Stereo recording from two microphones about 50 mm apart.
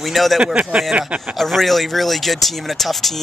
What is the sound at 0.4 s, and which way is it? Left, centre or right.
Speech, right.